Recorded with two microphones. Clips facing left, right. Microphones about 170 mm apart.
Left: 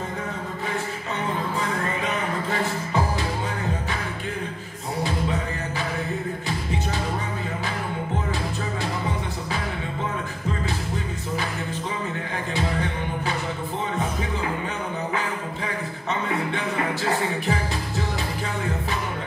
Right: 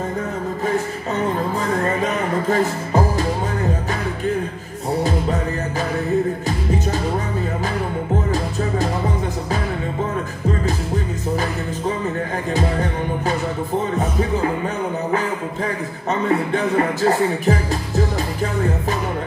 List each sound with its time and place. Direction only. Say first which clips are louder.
1.8 s music: right 6 dB; 45° right (ahead or behind)
15.1 s music: right 6 dB; 40° right (ahead or behind)